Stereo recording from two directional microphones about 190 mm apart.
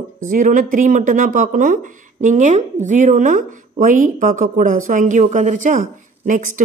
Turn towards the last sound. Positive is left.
turn(degrees=-45)  # may be behind; listen again after turning